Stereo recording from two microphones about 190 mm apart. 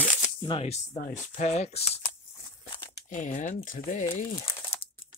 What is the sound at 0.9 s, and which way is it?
Speech, 50° left (ahead or behind).